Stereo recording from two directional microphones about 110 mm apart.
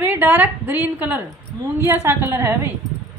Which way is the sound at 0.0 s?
15° right (ahead or behind).